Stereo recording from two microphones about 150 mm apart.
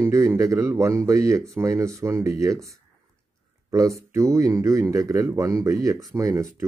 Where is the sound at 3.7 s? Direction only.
20° right (ahead or behind).